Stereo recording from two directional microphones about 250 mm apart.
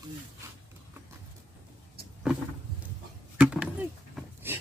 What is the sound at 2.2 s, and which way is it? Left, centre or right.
Vehicle, centre.